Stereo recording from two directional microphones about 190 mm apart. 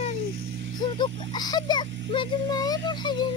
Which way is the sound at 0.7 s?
25° left (ahead or behind).